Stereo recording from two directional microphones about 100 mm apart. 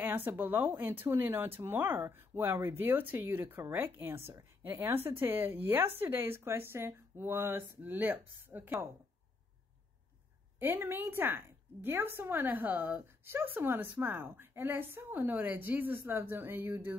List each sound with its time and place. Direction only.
0.0 s speech: 20° right (ahead or behind)
10.6 s speech: 20° right (ahead or behind)